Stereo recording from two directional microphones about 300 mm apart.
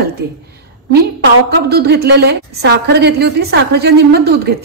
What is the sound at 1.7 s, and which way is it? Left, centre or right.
A woman's voice, right.